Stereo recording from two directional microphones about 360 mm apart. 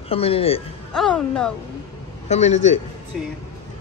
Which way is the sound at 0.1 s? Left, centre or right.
Centre.